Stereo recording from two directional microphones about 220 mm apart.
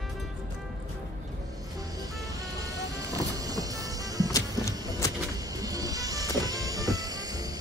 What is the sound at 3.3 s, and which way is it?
Music, 15° right (ahead or behind).